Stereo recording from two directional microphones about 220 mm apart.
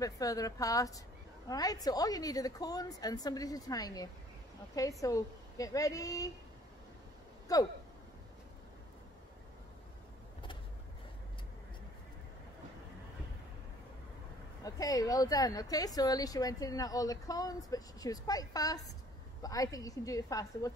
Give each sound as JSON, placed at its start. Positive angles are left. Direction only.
{"t": 0.0, "sound": "speech", "side_deg": 15}
{"t": 7.5, "sound": "speech", "side_deg": 15}
{"t": 14.6, "sound": "speech", "side_deg": 15}